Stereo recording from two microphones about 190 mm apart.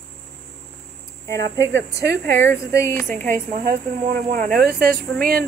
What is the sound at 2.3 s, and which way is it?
Speech, 15° left (ahead or behind).